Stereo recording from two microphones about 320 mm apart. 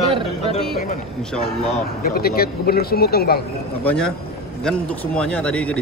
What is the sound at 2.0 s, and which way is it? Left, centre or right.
Speech, left.